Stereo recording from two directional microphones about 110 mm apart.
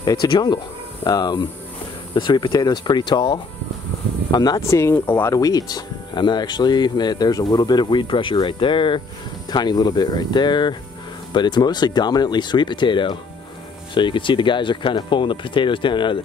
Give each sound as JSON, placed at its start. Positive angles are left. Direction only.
{"t": 0.0, "sound": "speech", "side_deg": 35}
{"t": 4.6, "sound": "speech", "side_deg": 25}
{"t": 5.3, "sound": "speech", "side_deg": 35}